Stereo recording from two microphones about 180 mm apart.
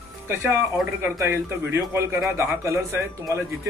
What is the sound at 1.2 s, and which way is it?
Speech, 15° right (ahead or behind).